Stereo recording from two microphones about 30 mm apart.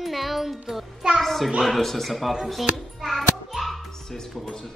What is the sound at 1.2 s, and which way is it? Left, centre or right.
Speech, centre.